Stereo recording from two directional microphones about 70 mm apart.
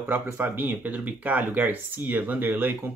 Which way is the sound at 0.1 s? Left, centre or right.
Right.